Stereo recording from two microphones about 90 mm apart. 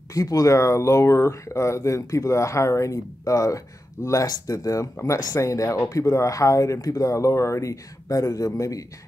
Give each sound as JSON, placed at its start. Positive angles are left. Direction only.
{"t": 0.1, "sound": "speech", "side_deg": 40}